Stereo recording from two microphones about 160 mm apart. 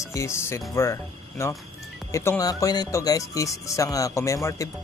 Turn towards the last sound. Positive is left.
turn(degrees=20)  # may be behind; listen again after turning